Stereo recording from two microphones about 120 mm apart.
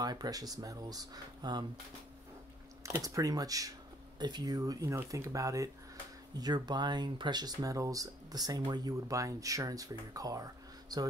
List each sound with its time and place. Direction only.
0.0 s speech: 35° right (ahead or behind)
3.0 s speech: 30° right (ahead or behind)